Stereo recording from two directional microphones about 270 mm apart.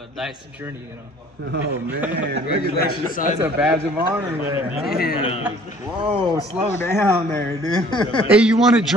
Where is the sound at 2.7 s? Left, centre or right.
Left.